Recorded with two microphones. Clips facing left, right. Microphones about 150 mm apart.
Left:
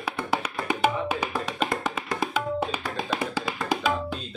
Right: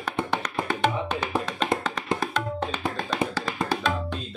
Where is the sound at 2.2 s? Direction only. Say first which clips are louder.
Left 2 dB; 10° left (ahead or behind).